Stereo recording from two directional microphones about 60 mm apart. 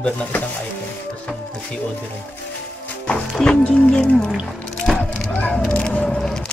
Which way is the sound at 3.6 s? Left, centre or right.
Left.